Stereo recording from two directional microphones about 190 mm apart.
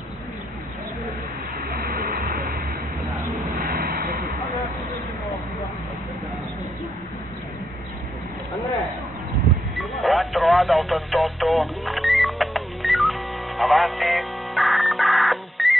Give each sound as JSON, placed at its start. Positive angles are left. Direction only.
{"t": 1.8, "sound": "vehicle", "side_deg": -50}
{"t": 9.8, "sound": "radio", "side_deg": 0}
{"t": 13.6, "sound": "music", "side_deg": 0}